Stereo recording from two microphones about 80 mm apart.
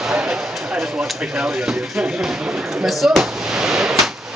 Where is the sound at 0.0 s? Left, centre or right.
Centre.